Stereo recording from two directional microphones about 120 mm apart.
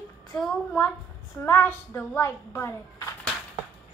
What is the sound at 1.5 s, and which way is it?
A woman's voice, 15° left (ahead or behind).